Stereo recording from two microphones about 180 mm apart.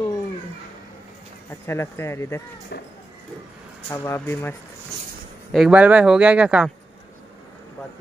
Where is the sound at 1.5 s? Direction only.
15° left (ahead or behind).